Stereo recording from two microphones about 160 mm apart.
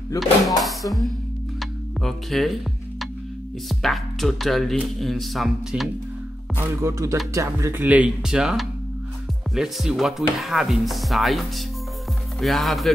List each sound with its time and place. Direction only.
0.2 s speech: centre (ahead or behind)
1.6 s music: centre (ahead or behind)
3.6 s speech: centre (ahead or behind)
6.8 s speech: 15° right (ahead or behind); by 12.9 s centre (ahead or behind)